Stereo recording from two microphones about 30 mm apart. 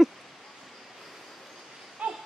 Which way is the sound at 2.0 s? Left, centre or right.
Right.